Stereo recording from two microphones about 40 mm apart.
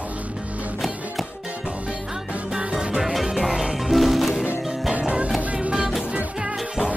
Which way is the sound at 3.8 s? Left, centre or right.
Centre.